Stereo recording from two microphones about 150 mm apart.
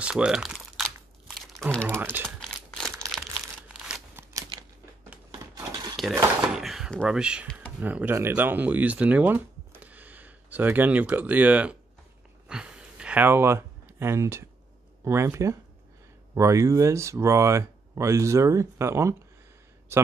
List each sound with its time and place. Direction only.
0.0 s typing: 5° right (ahead or behind)
1.4 s crumpling: centre (ahead or behind)
4.2 s typewriter: 20° right (ahead or behind)
5.5 s a sound: 30° right (ahead or behind)
6.5 s door: 5° right (ahead or behind)
7.8 s speech: 10° right (ahead or behind)
12.4 s a sound: 5° right (ahead or behind)
15.0 s speech: 15° right (ahead or behind)